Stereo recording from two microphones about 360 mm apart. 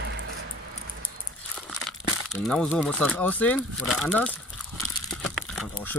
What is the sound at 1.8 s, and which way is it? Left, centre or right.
Speech, centre.